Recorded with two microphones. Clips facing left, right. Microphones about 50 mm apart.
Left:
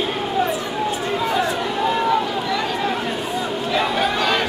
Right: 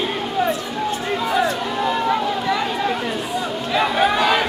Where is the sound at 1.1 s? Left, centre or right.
Centre.